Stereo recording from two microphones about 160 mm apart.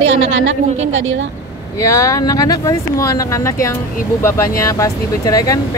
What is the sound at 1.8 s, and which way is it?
Speech, 20° left (ahead or behind).